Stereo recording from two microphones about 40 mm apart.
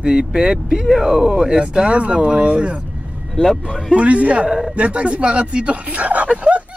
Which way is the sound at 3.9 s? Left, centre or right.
Right.